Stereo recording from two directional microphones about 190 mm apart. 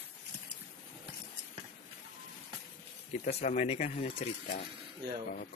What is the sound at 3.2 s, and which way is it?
Speech, 40° left (ahead or behind).